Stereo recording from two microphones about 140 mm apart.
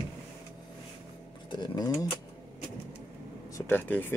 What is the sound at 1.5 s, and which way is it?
Speech, 30° left (ahead or behind).